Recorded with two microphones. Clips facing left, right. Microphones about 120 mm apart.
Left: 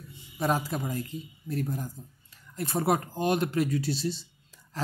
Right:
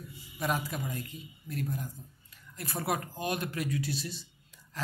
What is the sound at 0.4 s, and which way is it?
Speech, 30° left (ahead or behind).